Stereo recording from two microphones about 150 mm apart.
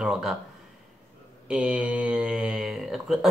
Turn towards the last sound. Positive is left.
turn(degrees=0)  # may be behind; listen again after turning